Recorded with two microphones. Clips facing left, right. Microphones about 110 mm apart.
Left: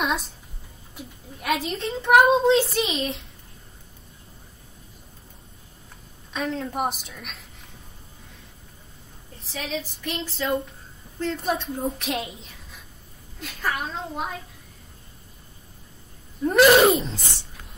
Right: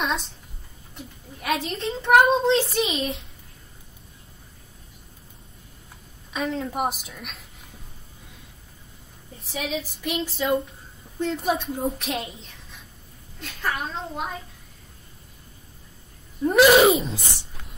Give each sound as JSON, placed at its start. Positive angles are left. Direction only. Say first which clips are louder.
{"t": 0.0, "sound": "a woman's voice", "louder": "left 1 dB", "side_deg": 0}
{"t": 6.3, "sound": "a woman's voice", "louder": "right 1 dB", "side_deg": 0}
{"t": 9.5, "sound": "a sound", "louder": "right 2 dB", "side_deg": -5}
{"t": 11.1, "sound": "a woman's voice", "louder": "right 2 dB", "side_deg": -10}
{"t": 16.4, "sound": "sneeze", "louder": "even", "side_deg": 0}
{"t": 17.1, "sound": "a sound", "louder": "right 2 dB", "side_deg": -15}